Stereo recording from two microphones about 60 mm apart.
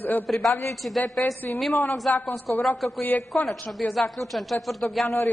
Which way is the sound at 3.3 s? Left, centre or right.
Centre.